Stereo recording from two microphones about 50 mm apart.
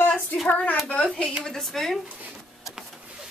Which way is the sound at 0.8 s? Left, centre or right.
Left.